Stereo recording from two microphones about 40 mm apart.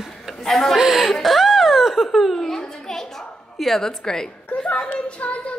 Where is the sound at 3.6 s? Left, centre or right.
Centre.